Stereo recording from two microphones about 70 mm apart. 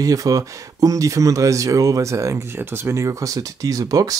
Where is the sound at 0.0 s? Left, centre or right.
Right.